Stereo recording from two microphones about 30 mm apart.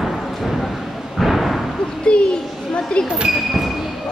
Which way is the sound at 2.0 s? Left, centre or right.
Left.